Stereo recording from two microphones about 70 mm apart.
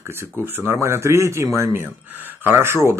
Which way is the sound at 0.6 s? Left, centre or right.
Right.